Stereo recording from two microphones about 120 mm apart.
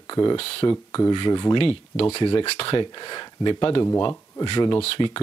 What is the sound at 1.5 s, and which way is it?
Speech, 55° left (ahead or behind).